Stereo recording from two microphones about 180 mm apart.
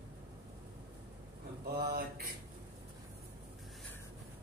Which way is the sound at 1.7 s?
60° right (ahead or behind).